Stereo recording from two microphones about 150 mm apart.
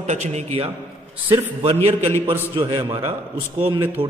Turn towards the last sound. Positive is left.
turn(degrees=-15)  # may be behind; listen again after turning